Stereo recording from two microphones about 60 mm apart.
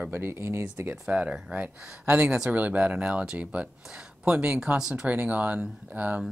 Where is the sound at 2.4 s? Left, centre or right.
Right.